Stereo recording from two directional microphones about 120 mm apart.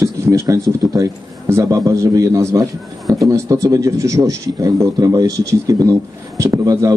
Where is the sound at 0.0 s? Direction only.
25° right (ahead or behind).